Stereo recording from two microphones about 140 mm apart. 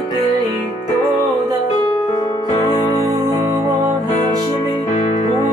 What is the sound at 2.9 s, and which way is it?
Music, 25° right (ahead or behind).